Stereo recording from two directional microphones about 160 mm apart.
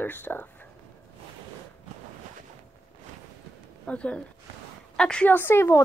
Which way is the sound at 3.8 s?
10° left (ahead or behind).